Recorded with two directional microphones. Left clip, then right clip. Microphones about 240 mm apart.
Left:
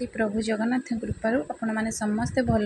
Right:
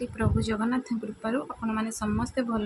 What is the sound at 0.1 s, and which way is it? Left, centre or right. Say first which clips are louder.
A woman's voice: left 3 dB; centre.